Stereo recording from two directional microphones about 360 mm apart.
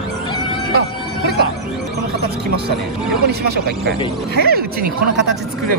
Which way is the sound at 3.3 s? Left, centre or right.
Right.